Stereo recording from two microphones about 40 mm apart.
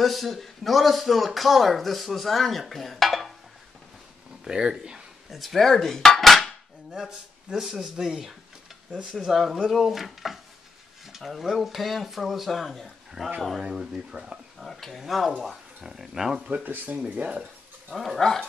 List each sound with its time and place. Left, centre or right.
0.0 s a man's voice: centre
2.7 s dishes: centre
4.5 s speech: centre
5.3 s dishes: centre
7.1 s a man's voice: centre
13.6 s speech: centre
14.6 s a man's voice: centre
15.8 s speech: centre
16.4 s speech: right
16.7 s speech: right
17.3 s a sound: right
17.9 s a man's voice: centre